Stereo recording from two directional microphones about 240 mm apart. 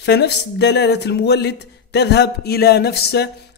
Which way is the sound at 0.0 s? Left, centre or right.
Left.